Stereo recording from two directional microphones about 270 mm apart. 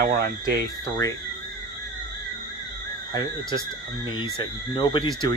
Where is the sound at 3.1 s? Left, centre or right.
Centre.